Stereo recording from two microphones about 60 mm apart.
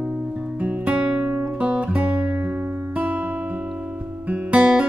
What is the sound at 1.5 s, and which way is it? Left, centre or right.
Music, right.